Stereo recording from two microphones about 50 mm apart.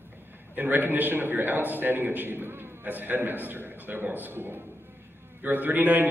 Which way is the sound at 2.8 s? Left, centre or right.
Right.